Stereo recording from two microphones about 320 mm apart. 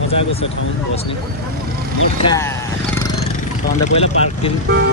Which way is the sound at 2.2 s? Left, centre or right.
Centre.